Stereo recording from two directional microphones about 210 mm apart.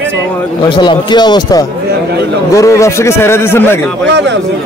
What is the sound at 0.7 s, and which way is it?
A man's voice, 20° left (ahead or behind).